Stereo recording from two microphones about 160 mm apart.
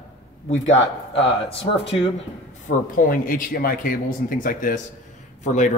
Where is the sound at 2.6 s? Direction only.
60° left (ahead or behind).